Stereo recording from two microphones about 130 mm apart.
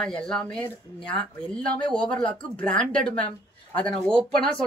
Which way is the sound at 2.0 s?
40° left (ahead or behind).